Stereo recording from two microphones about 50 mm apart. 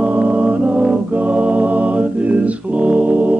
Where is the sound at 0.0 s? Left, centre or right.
Right.